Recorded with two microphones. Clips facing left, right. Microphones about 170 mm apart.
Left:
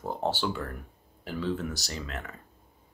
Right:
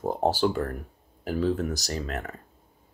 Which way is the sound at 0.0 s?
40° right (ahead or behind).